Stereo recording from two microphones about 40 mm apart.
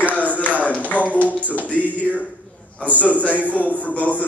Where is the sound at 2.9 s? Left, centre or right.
Left.